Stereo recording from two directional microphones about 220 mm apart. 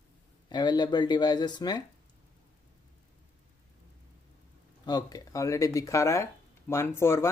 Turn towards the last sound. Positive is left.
turn(degrees=10)  # may be behind; listen again after turning